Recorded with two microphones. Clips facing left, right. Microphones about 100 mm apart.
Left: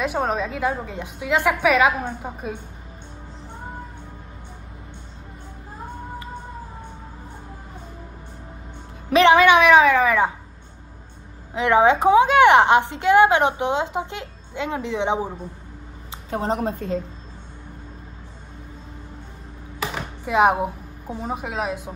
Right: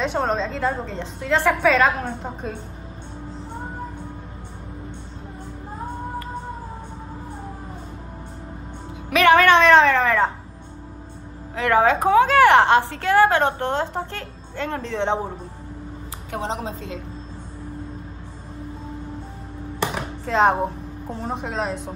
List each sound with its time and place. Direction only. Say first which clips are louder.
0.0 s a woman's voice: right 1 dB; 5° left (ahead or behind)
9.1 s speech: left 1 dB; 30° left (ahead or behind)
9.4 s a woman's voice: even; 10° left (ahead or behind)
11.5 s a woman's voice: left 1 dB; 20° left (ahead or behind)
16.3 s a woman's voice: left 4 dB; 40° left (ahead or behind)
19.8 s speech: right 2 dB; 5° left (ahead or behind)